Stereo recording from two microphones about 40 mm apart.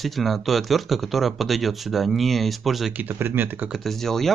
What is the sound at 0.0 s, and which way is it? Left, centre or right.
Speech, centre.